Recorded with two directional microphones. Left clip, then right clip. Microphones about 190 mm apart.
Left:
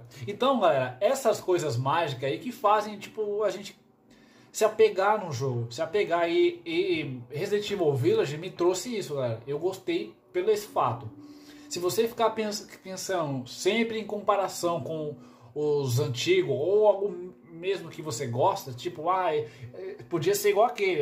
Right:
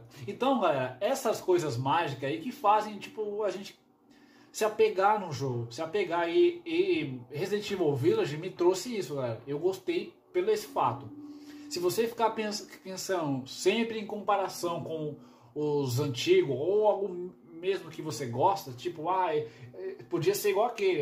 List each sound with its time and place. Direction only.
0.3 s speech: 15° left (ahead or behind)